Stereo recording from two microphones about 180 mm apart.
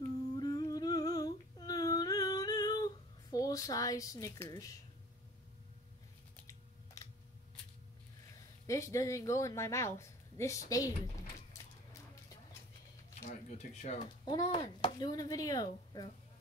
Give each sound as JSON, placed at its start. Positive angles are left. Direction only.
{"t": 0.0, "sound": "humming", "side_deg": 20}
{"t": 8.6, "sound": "speech", "side_deg": 15}
{"t": 13.2, "sound": "speech", "side_deg": 40}
{"t": 13.9, "sound": "speech", "side_deg": 25}